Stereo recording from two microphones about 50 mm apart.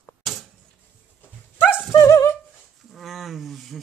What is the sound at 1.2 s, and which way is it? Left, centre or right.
Dog, left.